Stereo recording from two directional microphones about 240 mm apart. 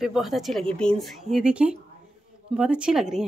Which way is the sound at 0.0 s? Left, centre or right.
Centre.